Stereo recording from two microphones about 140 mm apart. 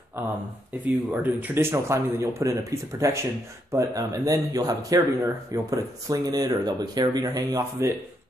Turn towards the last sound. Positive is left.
turn(degrees=-25)  # may be behind; listen again after turning